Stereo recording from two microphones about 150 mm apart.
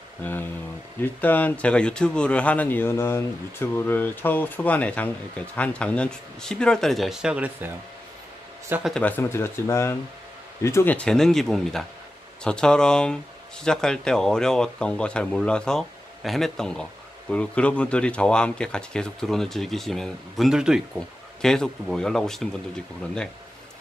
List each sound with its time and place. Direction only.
0.2 s speech: 15° left (ahead or behind); by 7.7 s 10° right (ahead or behind)
8.8 s speech: 10° left (ahead or behind)